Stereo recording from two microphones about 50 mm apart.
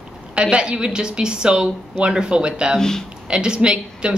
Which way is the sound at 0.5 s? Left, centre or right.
Centre.